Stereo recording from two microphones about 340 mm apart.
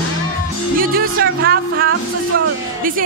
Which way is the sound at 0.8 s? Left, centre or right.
Right.